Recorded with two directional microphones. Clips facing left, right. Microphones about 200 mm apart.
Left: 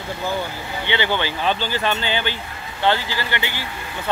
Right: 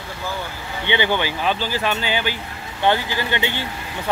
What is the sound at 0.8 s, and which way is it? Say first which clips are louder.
Speech: right 2 dB; 15° right (ahead or behind).